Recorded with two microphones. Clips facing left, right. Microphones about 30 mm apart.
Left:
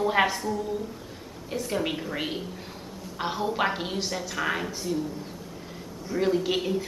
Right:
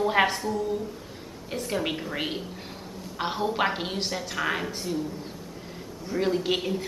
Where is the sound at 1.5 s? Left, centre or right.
Centre.